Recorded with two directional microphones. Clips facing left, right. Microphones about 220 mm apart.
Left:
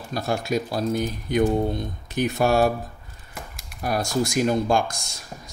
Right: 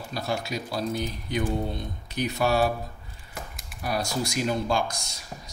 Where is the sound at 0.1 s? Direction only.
50° left (ahead or behind).